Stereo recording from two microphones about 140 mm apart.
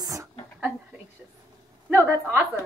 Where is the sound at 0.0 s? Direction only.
25° right (ahead or behind).